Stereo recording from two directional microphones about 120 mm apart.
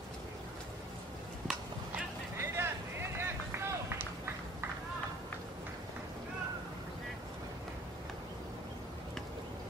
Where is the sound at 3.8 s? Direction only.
20° right (ahead or behind).